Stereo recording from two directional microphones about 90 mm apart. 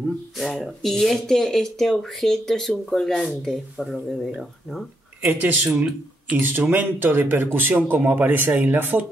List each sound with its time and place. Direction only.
0.4 s speech: centre (ahead or behind)
5.2 s speech: 20° right (ahead or behind)